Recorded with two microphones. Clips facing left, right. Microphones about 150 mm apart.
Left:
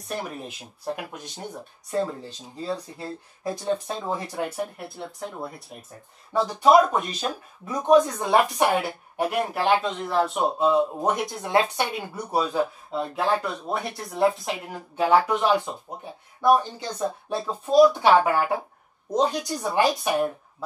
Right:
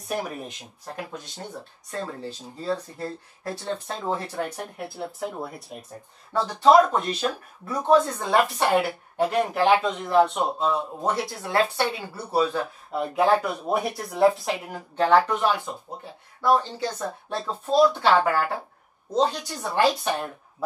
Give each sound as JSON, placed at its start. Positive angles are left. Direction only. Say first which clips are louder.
{"t": 0.1, "sound": "speech", "louder": "right 2 dB", "side_deg": -5}
{"t": 6.3, "sound": "speech", "louder": "even", "side_deg": 10}
{"t": 10.6, "sound": "speech", "louder": "left 4 dB", "side_deg": 15}
{"t": 13.1, "sound": "speech", "louder": "right 5 dB", "side_deg": 0}